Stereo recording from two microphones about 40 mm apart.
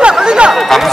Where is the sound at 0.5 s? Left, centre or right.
Centre.